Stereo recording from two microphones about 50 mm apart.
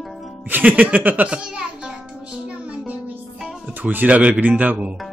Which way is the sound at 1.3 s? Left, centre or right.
Centre.